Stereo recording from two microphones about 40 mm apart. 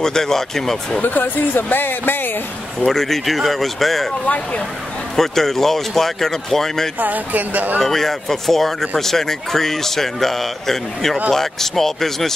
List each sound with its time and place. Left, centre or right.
0.0 s speech: centre
1.0 s speech: left
2.8 s speech: centre
5.1 s speech: centre
7.0 s speech: right
7.8 s speech: centre